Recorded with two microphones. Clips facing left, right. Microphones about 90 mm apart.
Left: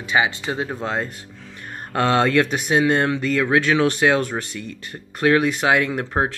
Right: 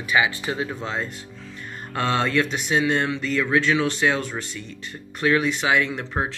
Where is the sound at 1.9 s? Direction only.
60° left (ahead or behind).